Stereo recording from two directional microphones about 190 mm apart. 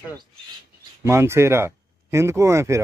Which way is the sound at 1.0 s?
15° right (ahead or behind).